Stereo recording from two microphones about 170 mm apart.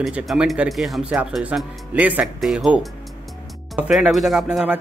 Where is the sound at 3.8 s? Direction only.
5° right (ahead or behind).